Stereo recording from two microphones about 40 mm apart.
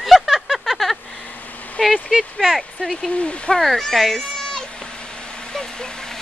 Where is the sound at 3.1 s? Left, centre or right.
Left.